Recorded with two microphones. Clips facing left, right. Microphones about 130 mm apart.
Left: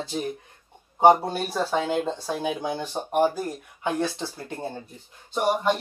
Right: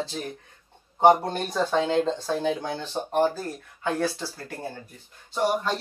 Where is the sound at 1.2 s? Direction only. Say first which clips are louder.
Even; 5° left (ahead or behind).